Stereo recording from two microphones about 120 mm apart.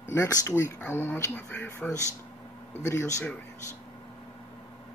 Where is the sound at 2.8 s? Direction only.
25° left (ahead or behind).